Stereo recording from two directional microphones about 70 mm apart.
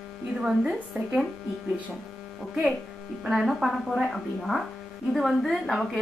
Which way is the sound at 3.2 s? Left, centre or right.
Centre.